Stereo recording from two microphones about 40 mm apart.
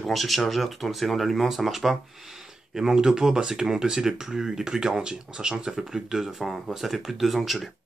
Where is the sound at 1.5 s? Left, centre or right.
Centre.